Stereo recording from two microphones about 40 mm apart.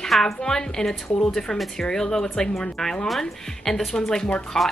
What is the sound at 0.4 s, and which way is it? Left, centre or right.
Speech, centre.